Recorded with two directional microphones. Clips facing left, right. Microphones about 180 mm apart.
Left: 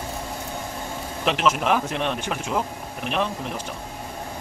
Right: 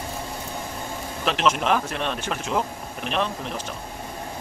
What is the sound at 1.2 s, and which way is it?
Speech, 10° left (ahead or behind).